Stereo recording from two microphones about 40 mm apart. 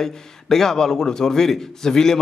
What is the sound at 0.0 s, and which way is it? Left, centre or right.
A man's voice, centre.